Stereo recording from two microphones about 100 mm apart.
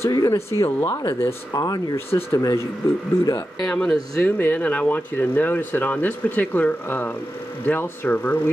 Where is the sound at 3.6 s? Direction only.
10° left (ahead or behind).